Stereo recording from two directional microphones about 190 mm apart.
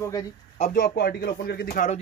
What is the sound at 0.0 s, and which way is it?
Speech, 15° left (ahead or behind).